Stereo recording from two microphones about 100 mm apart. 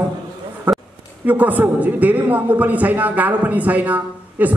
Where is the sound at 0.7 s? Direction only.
15° right (ahead or behind).